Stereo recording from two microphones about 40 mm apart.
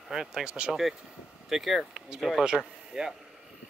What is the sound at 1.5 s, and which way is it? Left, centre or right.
Speech, centre.